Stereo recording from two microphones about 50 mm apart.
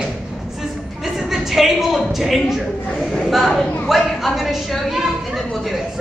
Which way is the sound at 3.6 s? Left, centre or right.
Left.